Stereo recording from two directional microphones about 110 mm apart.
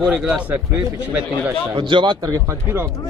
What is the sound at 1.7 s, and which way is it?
Speech, 45° right (ahead or behind).